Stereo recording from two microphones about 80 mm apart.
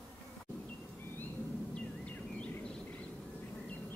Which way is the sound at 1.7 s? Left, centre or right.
Centre.